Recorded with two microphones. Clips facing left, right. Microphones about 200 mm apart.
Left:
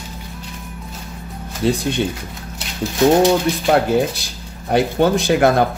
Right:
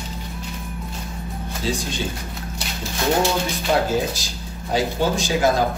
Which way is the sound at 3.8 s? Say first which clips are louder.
Left 5 dB; 60° left (ahead or behind).